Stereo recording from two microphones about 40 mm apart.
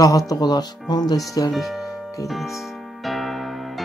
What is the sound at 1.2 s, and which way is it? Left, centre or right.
Speech, centre.